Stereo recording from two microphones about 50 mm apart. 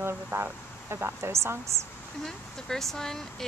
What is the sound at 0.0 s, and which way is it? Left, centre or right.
Speech, right.